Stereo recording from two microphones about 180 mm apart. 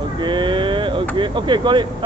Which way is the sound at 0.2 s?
25° right (ahead or behind).